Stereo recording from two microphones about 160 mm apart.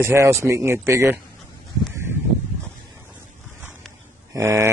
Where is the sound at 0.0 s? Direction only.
15° right (ahead or behind).